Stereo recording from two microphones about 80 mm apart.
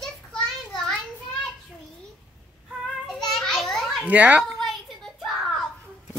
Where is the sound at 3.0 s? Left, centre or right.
Centre.